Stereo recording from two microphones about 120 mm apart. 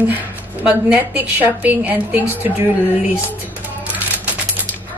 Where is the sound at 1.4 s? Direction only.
15° right (ahead or behind).